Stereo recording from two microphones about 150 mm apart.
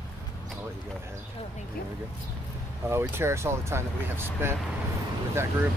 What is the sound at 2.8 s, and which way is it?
Speech, 15° right (ahead or behind).